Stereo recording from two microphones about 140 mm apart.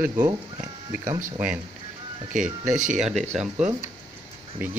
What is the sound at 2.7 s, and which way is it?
Speech, 65° right (ahead or behind).